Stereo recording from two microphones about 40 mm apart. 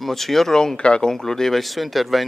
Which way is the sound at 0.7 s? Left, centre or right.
Left.